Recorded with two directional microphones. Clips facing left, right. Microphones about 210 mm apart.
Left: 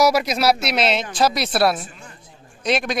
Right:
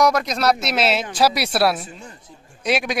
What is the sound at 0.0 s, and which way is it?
A man's voice, 5° left (ahead or behind).